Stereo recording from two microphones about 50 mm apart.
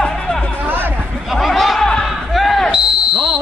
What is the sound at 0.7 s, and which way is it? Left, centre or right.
Chatter, right.